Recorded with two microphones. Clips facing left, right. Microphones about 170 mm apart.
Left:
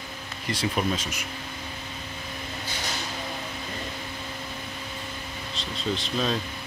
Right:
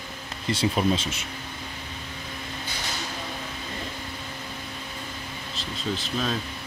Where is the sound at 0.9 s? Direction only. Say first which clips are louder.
Right 3 dB; 30° right (ahead or behind).